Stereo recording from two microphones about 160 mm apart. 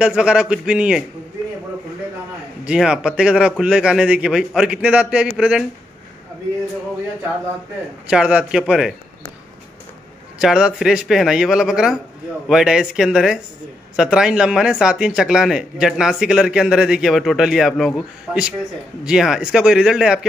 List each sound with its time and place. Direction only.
0.0 s speech: 5° right (ahead or behind)
2.6 s speech: 5° right (ahead or behind)
8.1 s speech: 5° right (ahead or behind)
10.4 s speech: 5° right (ahead or behind)